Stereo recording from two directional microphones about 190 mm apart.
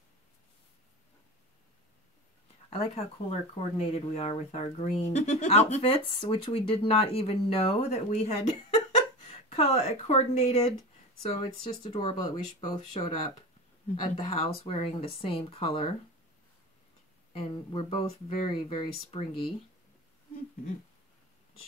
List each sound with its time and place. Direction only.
2.7 s speech: 35° left (ahead or behind)
17.3 s speech: 30° left (ahead or behind)